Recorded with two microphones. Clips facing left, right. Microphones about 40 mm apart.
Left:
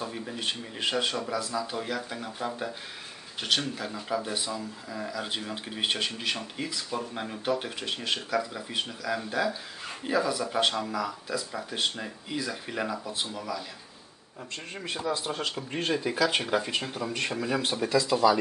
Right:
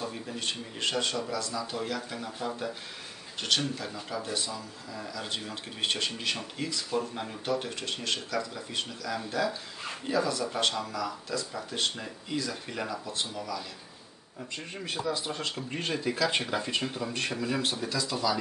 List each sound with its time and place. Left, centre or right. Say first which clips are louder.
0.0 s speech: left 2 dB; centre
14.8 s speech: left 1 dB; centre
17.5 s speech: left 3 dB; centre